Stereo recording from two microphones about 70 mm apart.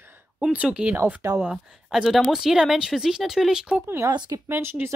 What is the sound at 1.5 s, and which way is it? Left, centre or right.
A woman's voice, centre.